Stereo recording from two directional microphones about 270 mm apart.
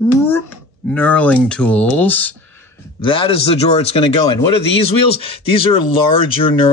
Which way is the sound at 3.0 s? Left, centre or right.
Centre.